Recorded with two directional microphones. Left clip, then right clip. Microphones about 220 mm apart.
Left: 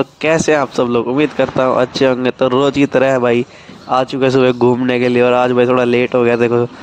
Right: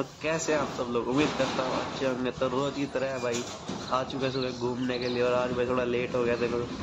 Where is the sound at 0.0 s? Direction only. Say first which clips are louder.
Left 16 dB; 45° left (ahead or behind).